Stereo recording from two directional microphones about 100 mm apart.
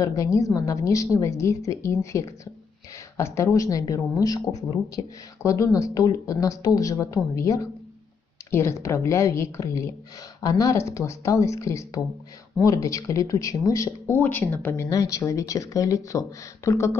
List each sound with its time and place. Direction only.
0.0 s a woman's voice: 35° left (ahead or behind)
14.9 s speech: 35° left (ahead or behind)